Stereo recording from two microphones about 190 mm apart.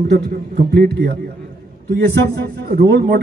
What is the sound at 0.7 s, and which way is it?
Speech, 60° right (ahead or behind).